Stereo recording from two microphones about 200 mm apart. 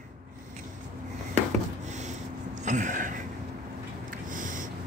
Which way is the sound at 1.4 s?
35° right (ahead or behind).